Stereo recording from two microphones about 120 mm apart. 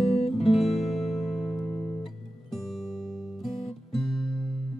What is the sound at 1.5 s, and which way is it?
Music, 20° left (ahead or behind).